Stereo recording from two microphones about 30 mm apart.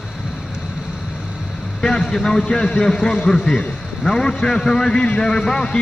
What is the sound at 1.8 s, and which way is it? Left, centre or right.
A man's voice, centre.